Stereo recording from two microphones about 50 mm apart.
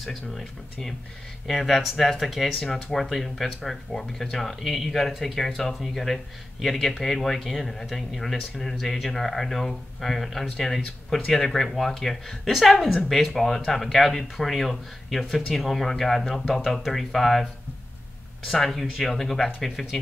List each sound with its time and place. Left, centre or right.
0.0 s speech: centre
18.5 s speech: centre